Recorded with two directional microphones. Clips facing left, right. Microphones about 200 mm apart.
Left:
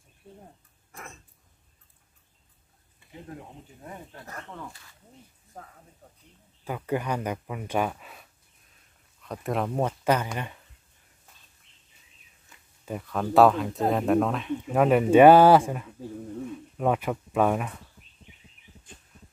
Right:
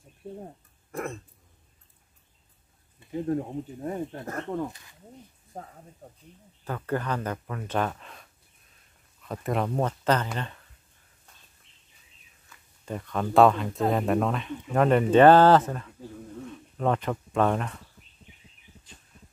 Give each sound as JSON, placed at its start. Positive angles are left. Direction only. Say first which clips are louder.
{"t": 0.2, "sound": "speech", "louder": "right 10 dB", "side_deg": -45}
{"t": 0.9, "sound": "throat clearing", "louder": "right 13 dB", "side_deg": -55}
{"t": 3.3, "sound": "speech", "louder": "right 14 dB", "side_deg": -40}
{"t": 4.6, "sound": "speech", "louder": "right 5 dB", "side_deg": -20}
{"t": 6.6, "sound": "speech", "louder": "left 1 dB", "side_deg": 10}
{"t": 12.8, "sound": "speech", "louder": "even", "side_deg": 5}